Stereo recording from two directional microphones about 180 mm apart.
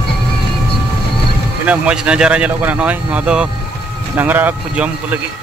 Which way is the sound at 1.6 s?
5° right (ahead or behind).